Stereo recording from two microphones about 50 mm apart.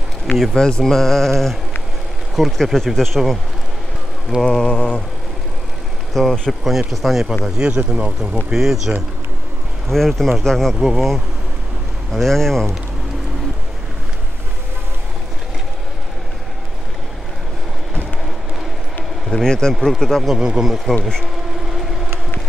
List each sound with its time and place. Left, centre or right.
0.6 s mantra: centre
2.3 s speech: centre
4.4 s mantra: centre
6.1 s speech: centre
7.4 s speech: centre
9.8 s speech: centre
19.3 s mantra: centre
20.3 s speech: centre
21.2 s vehicle: centre